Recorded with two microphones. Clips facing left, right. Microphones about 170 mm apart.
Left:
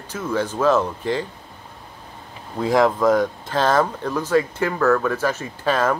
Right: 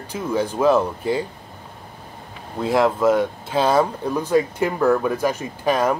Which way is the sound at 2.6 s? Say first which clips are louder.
Left 1 dB; centre (ahead or behind).